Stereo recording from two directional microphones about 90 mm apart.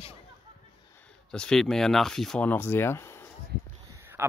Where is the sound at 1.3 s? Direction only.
5° left (ahead or behind).